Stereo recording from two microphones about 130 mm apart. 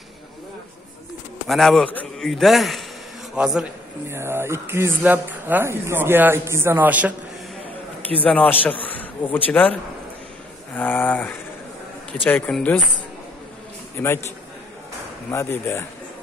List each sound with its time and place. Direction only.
1.5 s a man's voice: centre (ahead or behind)
4.1 s speech: 20° right (ahead or behind)
8.2 s a sound: 10° left (ahead or behind)
13.9 s a man's voice: 20° left (ahead or behind)
15.3 s a man's voice: 20° left (ahead or behind)